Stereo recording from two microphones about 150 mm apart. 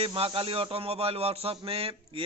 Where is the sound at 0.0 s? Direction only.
40° right (ahead or behind).